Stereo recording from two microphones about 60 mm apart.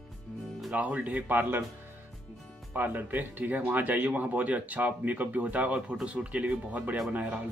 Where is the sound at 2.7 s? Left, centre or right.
Right.